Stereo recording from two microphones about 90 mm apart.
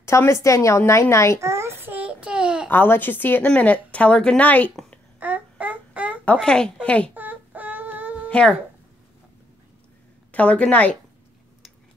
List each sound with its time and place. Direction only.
0.0 s speech: 30° left (ahead or behind)
1.4 s child singing: 30° right (ahead or behind); by 2.7 s 10° right (ahead or behind)
2.7 s a woman's voice: 20° left (ahead or behind)
5.2 s a sound: 15° right (ahead or behind)
6.4 s speech: 10° left (ahead or behind)
7.2 s a sound: 20° right (ahead or behind)
8.3 s speech: 10° left (ahead or behind)
10.3 s speech: 15° left (ahead or behind)